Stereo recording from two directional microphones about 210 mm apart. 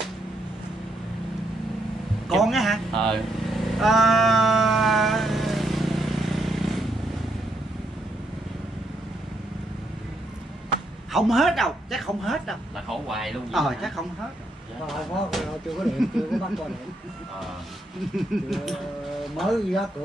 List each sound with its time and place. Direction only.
2.2 s vehicle: centre (ahead or behind)
11.1 s speech: centre (ahead or behind)
18.1 s speech: centre (ahead or behind)